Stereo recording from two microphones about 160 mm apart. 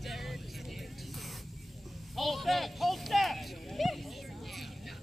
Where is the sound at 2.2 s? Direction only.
Centre (ahead or behind).